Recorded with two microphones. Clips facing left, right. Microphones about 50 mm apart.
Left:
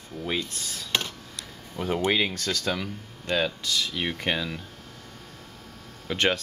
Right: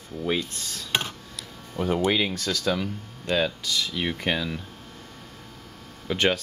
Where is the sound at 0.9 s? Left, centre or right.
Right.